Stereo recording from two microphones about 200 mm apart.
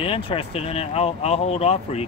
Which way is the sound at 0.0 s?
25° left (ahead or behind).